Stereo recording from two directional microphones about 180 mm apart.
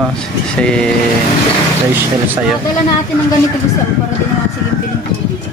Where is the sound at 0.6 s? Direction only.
5° left (ahead or behind).